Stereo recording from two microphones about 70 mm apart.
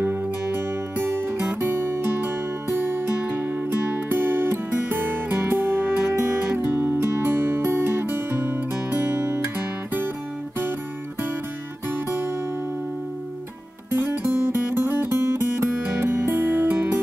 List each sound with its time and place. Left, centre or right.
0.0 s music: right
11.9 s music: right
13.8 s music: right